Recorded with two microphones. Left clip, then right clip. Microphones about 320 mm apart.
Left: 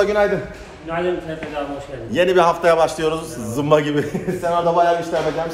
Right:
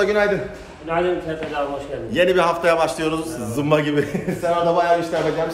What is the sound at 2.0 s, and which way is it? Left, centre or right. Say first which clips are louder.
A man's voice: left 2 dB; centre.